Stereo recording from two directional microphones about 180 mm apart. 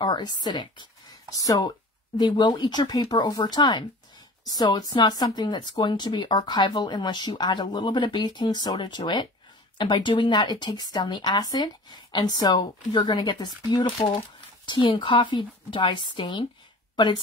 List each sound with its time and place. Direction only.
0.0 s a woman's voice: 25° left (ahead or behind)